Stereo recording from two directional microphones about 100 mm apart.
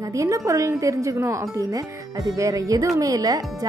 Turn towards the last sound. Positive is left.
turn(degrees=-35)  # may be behind; listen again after turning